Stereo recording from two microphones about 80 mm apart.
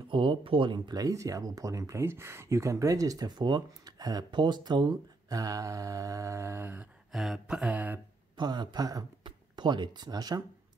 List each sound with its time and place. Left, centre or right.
0.1 s speech: right
1.0 s speech: right
5.3 s speech: right
6.6 s a sound: centre
7.1 s a sound: centre
8.4 s a man's voice: right
9.2 s speech: right